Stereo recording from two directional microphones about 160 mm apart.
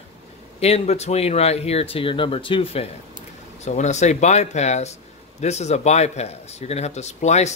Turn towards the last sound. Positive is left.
turn(degrees=45)  # may be behind; listen again after turning